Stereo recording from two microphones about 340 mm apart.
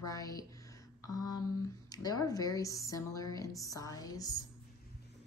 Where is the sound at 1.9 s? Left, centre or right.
Centre.